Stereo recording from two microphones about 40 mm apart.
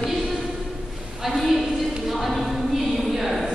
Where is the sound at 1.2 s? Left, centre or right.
Centre.